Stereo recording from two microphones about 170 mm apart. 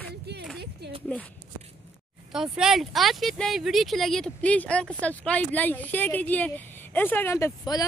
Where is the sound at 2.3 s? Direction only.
5° right (ahead or behind).